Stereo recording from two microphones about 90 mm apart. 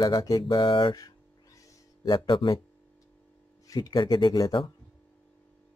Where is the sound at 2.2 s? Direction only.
65° left (ahead or behind).